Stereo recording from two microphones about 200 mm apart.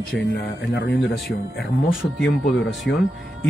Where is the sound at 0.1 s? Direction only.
60° left (ahead or behind).